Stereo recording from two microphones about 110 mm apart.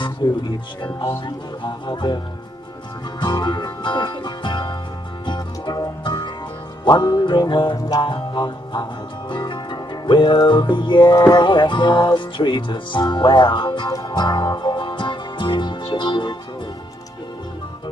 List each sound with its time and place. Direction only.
0.0 s speech: 45° left (ahead or behind)
1.2 s music: 45° left (ahead or behind)
3.2 s music: 45° left (ahead or behind)